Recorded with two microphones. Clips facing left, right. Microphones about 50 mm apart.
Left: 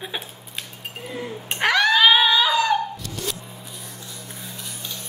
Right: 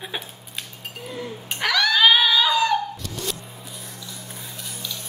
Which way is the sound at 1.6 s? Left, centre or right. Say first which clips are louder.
Left 3 dB; left.